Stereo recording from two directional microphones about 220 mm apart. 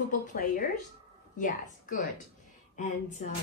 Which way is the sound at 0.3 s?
40° left (ahead or behind).